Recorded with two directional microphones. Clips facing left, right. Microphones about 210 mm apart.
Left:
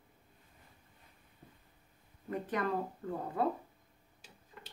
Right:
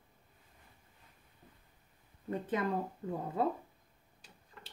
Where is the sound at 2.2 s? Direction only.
25° right (ahead or behind).